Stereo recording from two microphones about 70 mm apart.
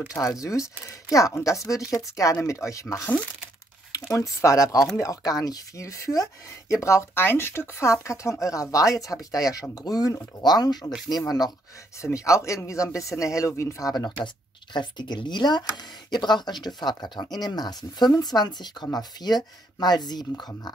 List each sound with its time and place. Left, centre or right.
0.5 s speech: left
7.2 s speech: left
12.0 s speech: left
13.9 s speech: left
18.9 s speech: left